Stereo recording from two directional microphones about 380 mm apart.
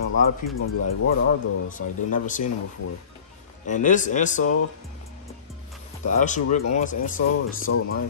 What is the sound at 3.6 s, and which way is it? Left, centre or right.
Speech, centre.